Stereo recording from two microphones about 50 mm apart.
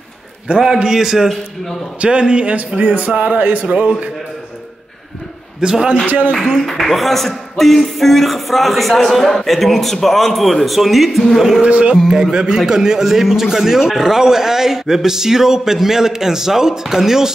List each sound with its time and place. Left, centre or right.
0.6 s a man's voice: centre
2.0 s speech: right
5.6 s a man's voice: centre
6.0 s music: right
6.6 s speech: centre
11.6 s a man's voice: right